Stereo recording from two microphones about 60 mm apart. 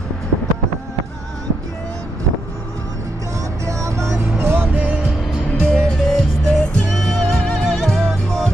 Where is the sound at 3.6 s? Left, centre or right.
Right.